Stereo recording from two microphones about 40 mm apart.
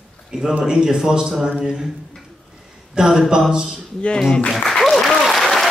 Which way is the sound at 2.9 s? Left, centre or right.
Centre.